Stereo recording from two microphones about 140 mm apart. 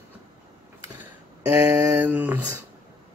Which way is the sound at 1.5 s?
10° right (ahead or behind).